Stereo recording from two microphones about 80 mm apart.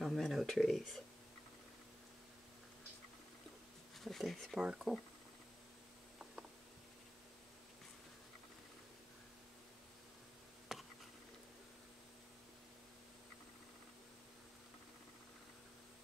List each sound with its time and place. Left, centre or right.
0.0 s speech: centre
4.0 s speech: centre
4.6 s speech: centre
10.7 s a sound: centre